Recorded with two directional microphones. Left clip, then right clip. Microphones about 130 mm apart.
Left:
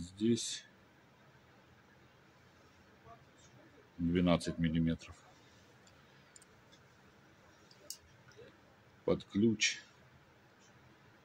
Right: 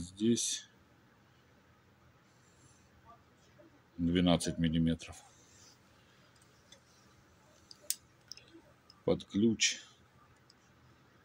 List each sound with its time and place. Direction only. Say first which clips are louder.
0.0 s speech: right 2 dB; 45° right (ahead or behind)
4.1 s speech: right 2 dB; 45° right (ahead or behind)
9.0 s speech: right 1 dB; 45° right (ahead or behind)